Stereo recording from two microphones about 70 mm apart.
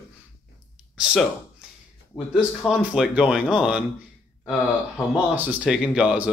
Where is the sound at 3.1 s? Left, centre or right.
Centre.